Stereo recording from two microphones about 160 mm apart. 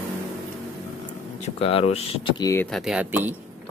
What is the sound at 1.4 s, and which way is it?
Speech, 35° left (ahead or behind).